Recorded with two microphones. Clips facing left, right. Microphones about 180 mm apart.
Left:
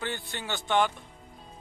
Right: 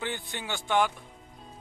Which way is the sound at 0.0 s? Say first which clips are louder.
Even; 15° right (ahead or behind).